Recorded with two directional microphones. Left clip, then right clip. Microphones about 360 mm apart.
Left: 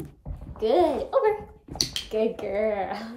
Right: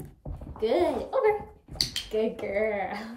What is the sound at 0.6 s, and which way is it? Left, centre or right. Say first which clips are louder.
A woman's voice: left 4 dB; centre.